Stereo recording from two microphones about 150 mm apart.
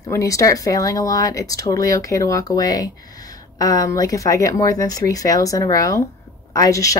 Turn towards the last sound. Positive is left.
turn(degrees=20)  # may be behind; listen again after turning